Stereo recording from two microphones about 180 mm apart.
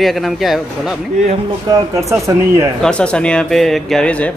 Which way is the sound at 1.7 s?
20° right (ahead or behind).